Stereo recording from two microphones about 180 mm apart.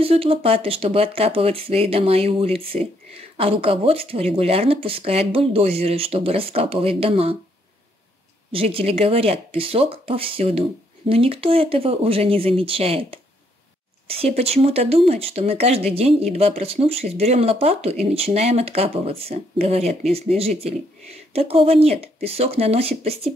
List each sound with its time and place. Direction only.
0.0 s speech: 30° right (ahead or behind)
8.5 s speech: 30° right (ahead or behind)